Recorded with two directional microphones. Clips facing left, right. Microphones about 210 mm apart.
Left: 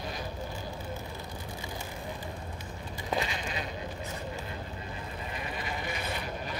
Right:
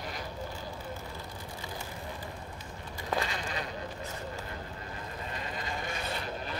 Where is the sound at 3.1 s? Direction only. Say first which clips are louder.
Left 1 dB; 15° left (ahead or behind).